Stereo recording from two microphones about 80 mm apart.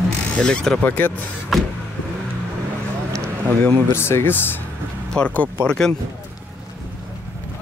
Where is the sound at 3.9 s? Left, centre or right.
Left; by 5.9 s centre.